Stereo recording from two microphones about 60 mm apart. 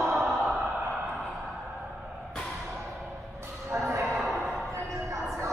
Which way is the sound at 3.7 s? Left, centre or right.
Right.